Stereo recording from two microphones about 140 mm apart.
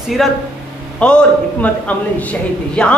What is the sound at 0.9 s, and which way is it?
A woman's voice, 10° left (ahead or behind).